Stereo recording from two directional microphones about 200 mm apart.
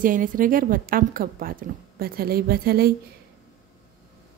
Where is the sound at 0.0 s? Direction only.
40° right (ahead or behind).